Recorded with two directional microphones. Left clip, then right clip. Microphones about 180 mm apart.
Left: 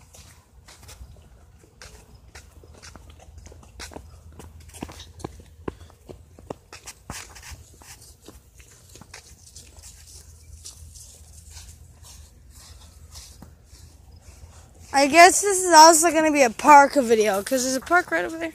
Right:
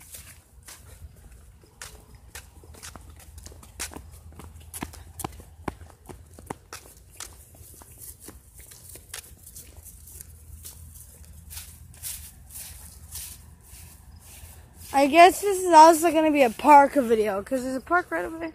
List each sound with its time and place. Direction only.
2.3 s clip-clop: 25° left (ahead or behind)
3.9 s walk: 45° right (ahead or behind)
4.7 s clip-clop: 15° right (ahead or behind)
14.9 s speech: 10° right (ahead or behind)
17.2 s speech: 20° left (ahead or behind)